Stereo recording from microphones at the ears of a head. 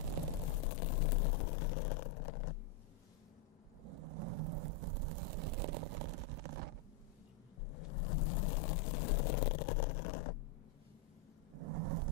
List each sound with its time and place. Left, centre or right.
0.5 s vehicle: left
3.8 s vehicle: right
7.6 s vehicle: left
11.5 s a sound: right